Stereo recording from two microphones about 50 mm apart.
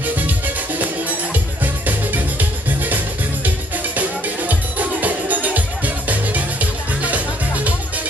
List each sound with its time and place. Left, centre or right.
0.0 s music: right
1.3 s music: right